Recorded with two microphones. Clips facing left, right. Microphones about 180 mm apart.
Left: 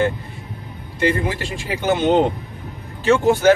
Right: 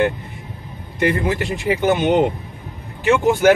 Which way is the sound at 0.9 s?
20° right (ahead or behind).